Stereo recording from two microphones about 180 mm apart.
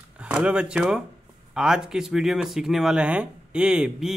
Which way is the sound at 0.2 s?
5° right (ahead or behind).